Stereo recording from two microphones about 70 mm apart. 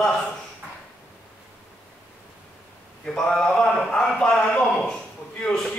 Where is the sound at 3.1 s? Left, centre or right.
Centre.